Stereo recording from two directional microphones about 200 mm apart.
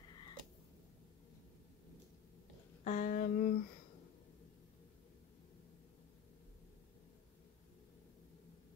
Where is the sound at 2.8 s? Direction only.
35° left (ahead or behind).